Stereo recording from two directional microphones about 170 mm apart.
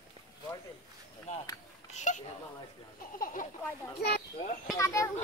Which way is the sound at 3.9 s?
70° left (ahead or behind).